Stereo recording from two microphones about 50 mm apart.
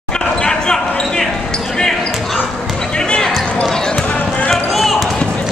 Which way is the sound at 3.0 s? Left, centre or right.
Centre.